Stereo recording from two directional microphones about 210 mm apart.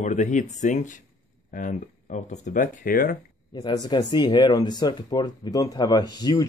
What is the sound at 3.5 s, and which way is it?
Speech, 20° left (ahead or behind).